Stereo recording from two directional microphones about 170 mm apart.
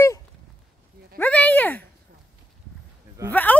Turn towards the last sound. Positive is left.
turn(degrees=10)  # may be behind; listen again after turning